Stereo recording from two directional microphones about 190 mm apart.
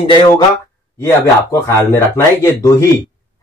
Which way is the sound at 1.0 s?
15° left (ahead or behind).